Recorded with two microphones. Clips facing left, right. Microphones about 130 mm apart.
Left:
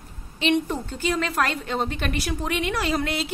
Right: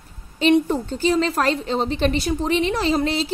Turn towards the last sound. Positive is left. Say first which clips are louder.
# right 5 dB
turn(degrees=-30)  # may be behind; listen again after turning